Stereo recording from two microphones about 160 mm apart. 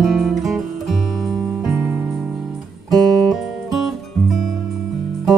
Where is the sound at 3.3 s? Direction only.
Centre (ahead or behind).